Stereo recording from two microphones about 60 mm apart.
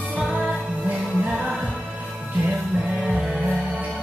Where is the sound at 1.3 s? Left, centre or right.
Centre.